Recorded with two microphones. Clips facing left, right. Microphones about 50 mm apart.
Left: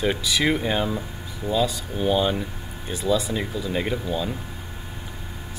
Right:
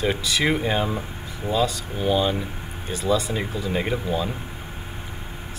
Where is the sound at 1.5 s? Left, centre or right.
Centre.